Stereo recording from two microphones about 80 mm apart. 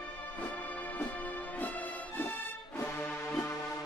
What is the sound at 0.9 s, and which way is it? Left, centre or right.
Music, left.